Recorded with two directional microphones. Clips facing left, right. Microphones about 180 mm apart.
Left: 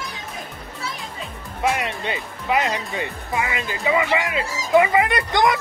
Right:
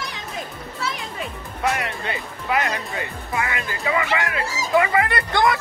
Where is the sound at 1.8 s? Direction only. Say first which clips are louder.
Left 1 dB; 20° left (ahead or behind).